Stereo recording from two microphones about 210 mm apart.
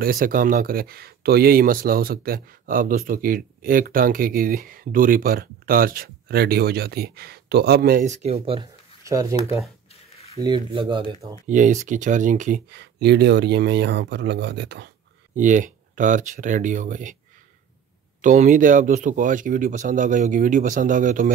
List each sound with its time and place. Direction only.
0.0 s speech: 45° right (ahead or behind)
9.0 s speech: 15° right (ahead or behind)
11.4 s speech: 35° right (ahead or behind); by 14.9 s 55° right (ahead or behind)
15.3 s speech: 40° right (ahead or behind)
18.2 s speech: 35° right (ahead or behind)